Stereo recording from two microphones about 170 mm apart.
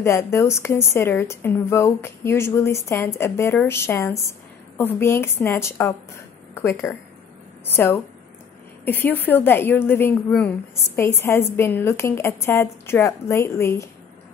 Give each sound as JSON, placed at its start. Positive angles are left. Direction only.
{"t": 0.0, "sound": "a woman's voice", "side_deg": 15}